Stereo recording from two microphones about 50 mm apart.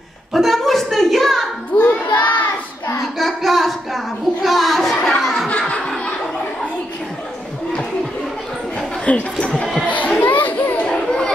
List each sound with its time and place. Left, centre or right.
0.3 s a sound: centre
1.8 s child singing: left
3.2 s a sound: centre
9.0 s speech: left
10.2 s children playing: left
11.1 s chatter: centre